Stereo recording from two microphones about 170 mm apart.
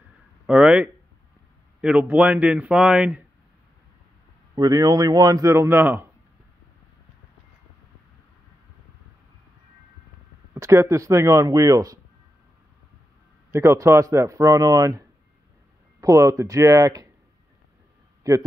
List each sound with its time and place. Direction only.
0.5 s speech: 5° right (ahead or behind)
4.6 s a man's voice: 25° right (ahead or behind)
10.5 s a man's voice: 15° right (ahead or behind)
13.5 s a man's voice: 15° right (ahead or behind)
18.3 s a man's voice: 20° right (ahead or behind)